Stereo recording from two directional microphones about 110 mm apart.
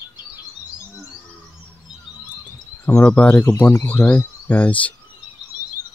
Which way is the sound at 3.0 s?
15° left (ahead or behind).